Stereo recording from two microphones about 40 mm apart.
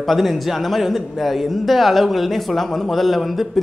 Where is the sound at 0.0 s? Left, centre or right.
Centre.